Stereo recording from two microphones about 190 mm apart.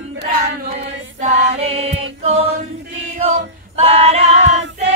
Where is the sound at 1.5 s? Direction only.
30° right (ahead or behind).